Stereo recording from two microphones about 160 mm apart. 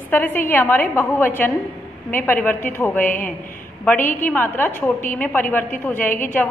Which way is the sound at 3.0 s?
55° left (ahead or behind).